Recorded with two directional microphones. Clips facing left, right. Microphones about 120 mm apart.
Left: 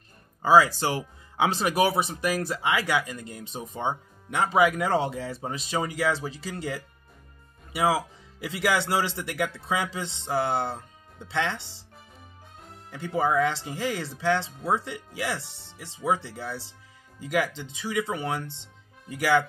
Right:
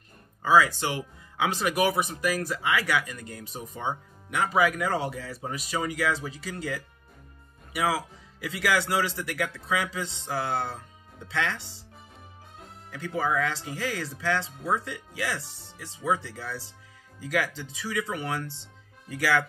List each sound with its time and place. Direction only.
0.4 s speech: 30° left (ahead or behind)
12.9 s speech: 25° left (ahead or behind)